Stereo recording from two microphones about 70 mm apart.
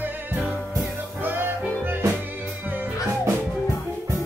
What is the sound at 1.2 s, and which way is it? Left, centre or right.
Music, right.